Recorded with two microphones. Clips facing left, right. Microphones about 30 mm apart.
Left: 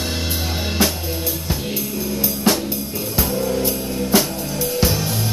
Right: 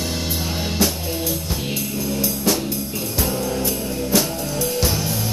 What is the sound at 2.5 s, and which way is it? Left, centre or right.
Music, left.